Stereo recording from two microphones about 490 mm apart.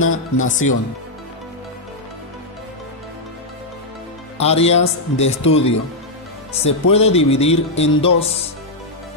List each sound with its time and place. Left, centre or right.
0.0 s speech: centre
4.4 s speech: centre